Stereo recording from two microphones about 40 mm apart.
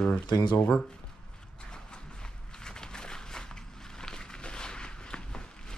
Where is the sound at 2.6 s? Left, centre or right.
Centre.